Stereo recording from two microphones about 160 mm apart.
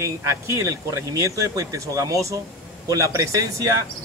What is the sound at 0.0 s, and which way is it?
A man's voice, 20° right (ahead or behind).